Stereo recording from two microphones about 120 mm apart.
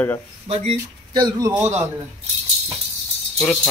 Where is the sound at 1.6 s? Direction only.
20° right (ahead or behind).